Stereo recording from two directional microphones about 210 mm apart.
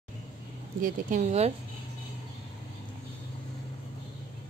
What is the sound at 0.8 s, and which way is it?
Speech, 35° right (ahead or behind).